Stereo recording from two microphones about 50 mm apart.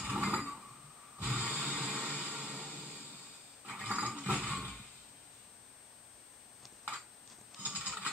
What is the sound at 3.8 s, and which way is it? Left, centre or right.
Dog, right.